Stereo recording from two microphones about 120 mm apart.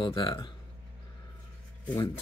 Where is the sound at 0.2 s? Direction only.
40° left (ahead or behind).